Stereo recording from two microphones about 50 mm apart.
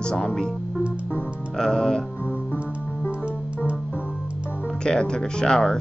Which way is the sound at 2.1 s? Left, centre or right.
Left.